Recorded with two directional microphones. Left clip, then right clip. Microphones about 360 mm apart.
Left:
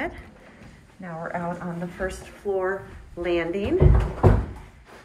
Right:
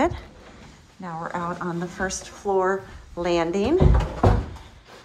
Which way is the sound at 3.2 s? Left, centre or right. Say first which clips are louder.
Right 3 dB; centre.